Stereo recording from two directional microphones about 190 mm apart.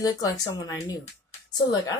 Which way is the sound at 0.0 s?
20° left (ahead or behind).